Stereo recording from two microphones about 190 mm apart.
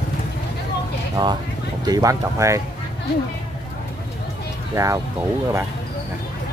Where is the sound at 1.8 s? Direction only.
20° right (ahead or behind).